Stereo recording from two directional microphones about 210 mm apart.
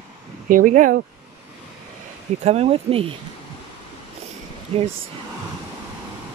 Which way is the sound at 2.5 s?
30° right (ahead or behind).